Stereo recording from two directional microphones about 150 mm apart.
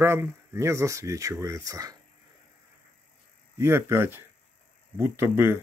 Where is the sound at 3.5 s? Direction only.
15° right (ahead or behind).